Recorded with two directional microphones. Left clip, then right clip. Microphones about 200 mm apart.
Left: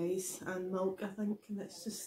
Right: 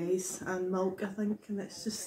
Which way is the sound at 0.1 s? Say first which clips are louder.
Right 5 dB; 10° left (ahead or behind).